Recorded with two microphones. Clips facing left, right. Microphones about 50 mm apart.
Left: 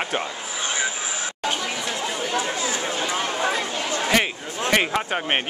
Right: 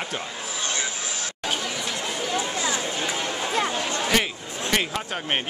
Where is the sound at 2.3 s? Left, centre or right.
Left.